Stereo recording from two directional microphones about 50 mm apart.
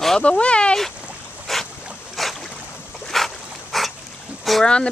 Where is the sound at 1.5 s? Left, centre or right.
Centre.